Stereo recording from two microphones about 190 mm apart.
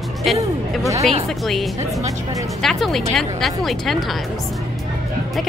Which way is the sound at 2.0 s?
15° right (ahead or behind).